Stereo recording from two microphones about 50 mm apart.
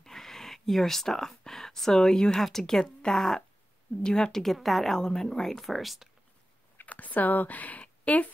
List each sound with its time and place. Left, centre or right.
0.0 s a woman's voice: centre
6.8 s speech: left